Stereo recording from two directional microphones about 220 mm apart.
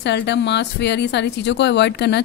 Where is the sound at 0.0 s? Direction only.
50° left (ahead or behind).